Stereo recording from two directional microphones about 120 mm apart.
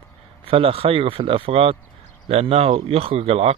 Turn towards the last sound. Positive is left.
turn(degrees=-55)  # may be behind; listen again after turning